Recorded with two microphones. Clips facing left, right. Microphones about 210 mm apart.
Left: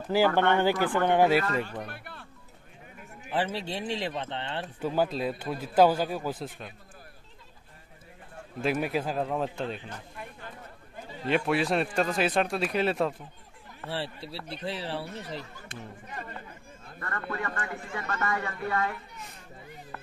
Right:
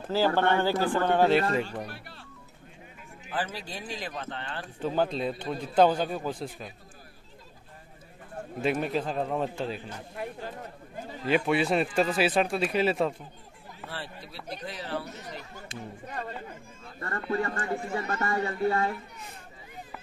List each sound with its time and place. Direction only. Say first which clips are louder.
0.1 s speech: left 1 dB; 15° left (ahead or behind)
1.9 s speech: left 1 dB; 55° left (ahead or behind)
3.3 s speech: left 4 dB; 25° left (ahead or behind)
4.8 s speech: even; 5° left (ahead or behind)
8.5 s speech: even; centre (ahead or behind)
11.2 s speech: right 1 dB; centre (ahead or behind)
13.8 s speech: left 6 dB; 30° left (ahead or behind)
15.7 s speech: right 3 dB; 55° left (ahead or behind)
17.0 s a woman's voice: right 5 dB; 30° right (ahead or behind)